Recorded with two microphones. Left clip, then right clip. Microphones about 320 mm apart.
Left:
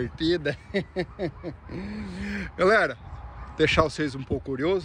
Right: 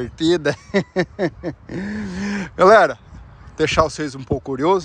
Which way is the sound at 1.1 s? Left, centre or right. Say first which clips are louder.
Right 9 dB; right.